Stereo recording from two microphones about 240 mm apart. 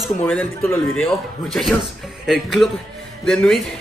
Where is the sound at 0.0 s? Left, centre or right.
Centre.